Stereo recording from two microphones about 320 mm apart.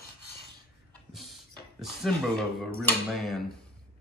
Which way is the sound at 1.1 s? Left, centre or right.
Centre.